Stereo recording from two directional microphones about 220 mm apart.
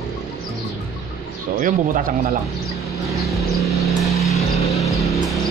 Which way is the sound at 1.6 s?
40° right (ahead or behind).